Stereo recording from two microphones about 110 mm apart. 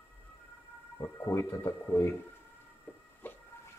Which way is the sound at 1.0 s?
25° left (ahead or behind).